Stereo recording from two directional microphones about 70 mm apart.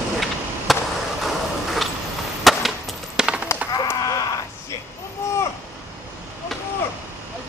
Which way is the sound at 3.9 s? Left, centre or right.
Left.